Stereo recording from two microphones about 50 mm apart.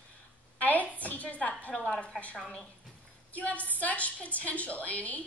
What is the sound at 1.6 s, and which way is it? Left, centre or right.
Speech, left.